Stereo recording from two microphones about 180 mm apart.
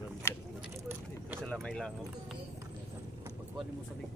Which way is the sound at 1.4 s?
5° left (ahead or behind).